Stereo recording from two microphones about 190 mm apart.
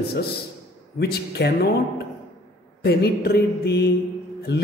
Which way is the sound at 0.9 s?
60° left (ahead or behind).